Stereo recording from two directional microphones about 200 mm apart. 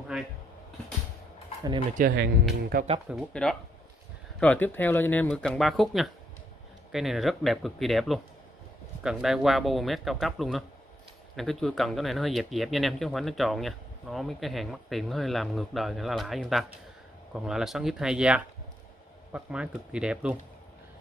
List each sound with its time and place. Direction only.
2.0 s speech: 50° right (ahead or behind)
3.1 s speech: centre (ahead or behind)